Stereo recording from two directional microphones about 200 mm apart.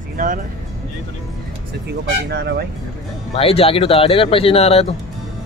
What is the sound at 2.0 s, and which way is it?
Speech, 55° right (ahead or behind).